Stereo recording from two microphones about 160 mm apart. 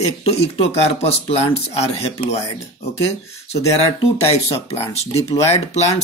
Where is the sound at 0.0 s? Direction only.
40° left (ahead or behind).